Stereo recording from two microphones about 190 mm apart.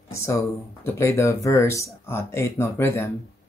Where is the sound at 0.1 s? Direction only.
15° left (ahead or behind).